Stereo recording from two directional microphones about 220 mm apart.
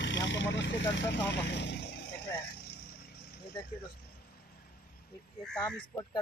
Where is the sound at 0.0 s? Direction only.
55° left (ahead or behind).